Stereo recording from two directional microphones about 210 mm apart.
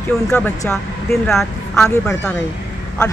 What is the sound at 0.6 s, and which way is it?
A woman's voice, 10° left (ahead or behind).